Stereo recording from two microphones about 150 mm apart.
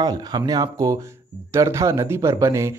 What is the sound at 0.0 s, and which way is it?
Speech, 25° right (ahead or behind).